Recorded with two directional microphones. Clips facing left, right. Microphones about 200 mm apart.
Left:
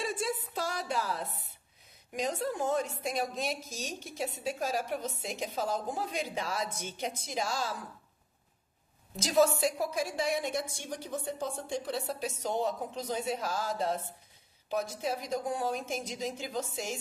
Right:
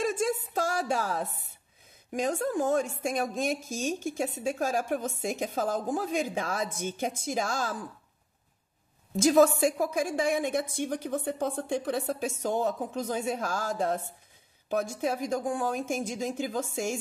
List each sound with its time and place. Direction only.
0.0 s music: 45° right (ahead or behind)
2.1 s a woman's voice: 50° right (ahead or behind)
9.1 s a woman's voice: 50° right (ahead or behind)